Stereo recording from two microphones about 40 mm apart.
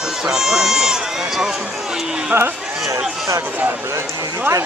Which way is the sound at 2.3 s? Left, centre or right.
Right.